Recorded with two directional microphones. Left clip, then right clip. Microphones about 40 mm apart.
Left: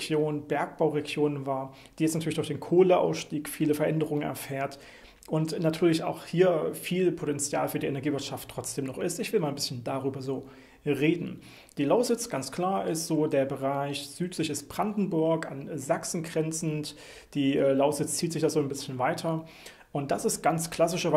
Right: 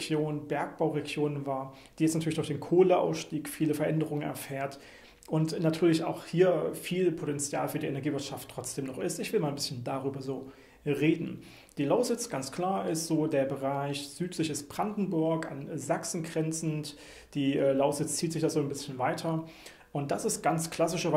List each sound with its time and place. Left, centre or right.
0.0 s speech: left